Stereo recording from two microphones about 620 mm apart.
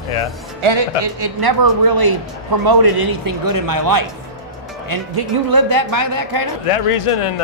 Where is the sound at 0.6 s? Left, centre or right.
Right.